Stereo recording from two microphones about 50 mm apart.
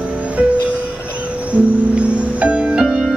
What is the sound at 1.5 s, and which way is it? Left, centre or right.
Music, right.